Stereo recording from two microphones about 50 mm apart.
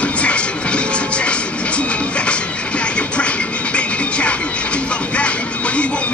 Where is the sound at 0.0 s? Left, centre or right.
Left.